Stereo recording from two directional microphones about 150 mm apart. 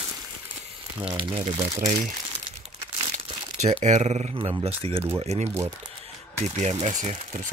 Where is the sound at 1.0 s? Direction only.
35° right (ahead or behind).